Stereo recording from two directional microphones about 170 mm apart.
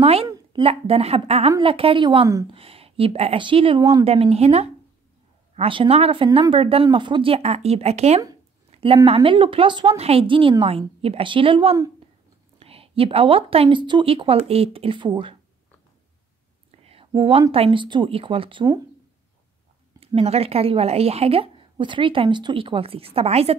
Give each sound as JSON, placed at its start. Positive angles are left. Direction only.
{"t": 0.0, "sound": "a woman's voice", "side_deg": -35}
{"t": 2.5, "sound": "a woman's voice", "side_deg": -35}
{"t": 16.8, "sound": "speech", "side_deg": -35}
{"t": 20.1, "sound": "a woman's voice", "side_deg": -35}